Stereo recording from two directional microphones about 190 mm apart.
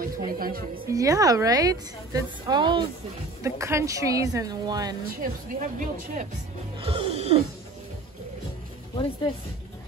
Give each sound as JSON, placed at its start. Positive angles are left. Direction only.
{"t": 0.0, "sound": "speech", "side_deg": -50}
{"t": 0.9, "sound": "a woman's voice", "side_deg": -15}
{"t": 5.2, "sound": "speech", "side_deg": -45}
{"t": 6.8, "sound": "music", "side_deg": -30}